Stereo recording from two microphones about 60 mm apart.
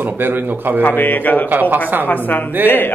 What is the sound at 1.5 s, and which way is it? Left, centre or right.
Speech, right.